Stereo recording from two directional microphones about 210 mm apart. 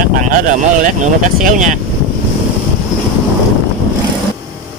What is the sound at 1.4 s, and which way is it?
Speech, 40° right (ahead or behind).